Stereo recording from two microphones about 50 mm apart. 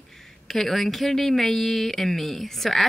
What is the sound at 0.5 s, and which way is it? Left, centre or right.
Speech, centre.